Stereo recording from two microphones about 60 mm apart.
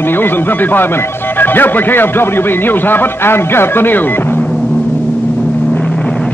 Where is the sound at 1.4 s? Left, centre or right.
Left.